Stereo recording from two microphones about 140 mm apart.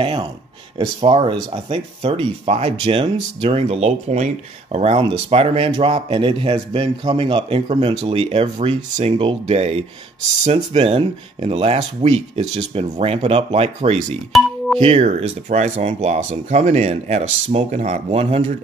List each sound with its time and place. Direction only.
0.0 s speech: 40° right (ahead or behind)
7.6 s speech: 50° right (ahead or behind)
13.7 s speech: 55° right (ahead or behind)
14.3 s music: centre (ahead or behind)
14.8 s speech: 50° right (ahead or behind)